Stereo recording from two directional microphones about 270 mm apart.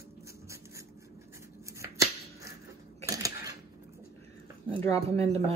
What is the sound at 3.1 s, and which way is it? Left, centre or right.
Camera, centre.